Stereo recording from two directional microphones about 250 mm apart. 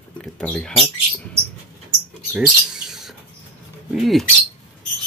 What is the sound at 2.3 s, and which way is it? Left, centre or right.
Rodents, centre.